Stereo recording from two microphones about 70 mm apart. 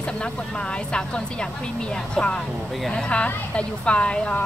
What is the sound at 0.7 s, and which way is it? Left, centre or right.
A woman's voice, centre.